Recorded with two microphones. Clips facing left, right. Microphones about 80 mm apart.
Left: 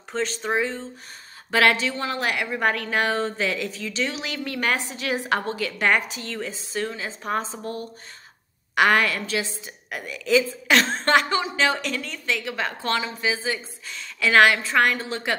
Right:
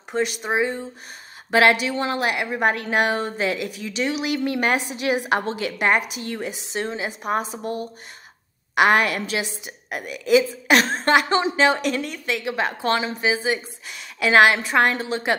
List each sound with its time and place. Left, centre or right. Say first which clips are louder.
0.1 s a woman's voice: right 2 dB; centre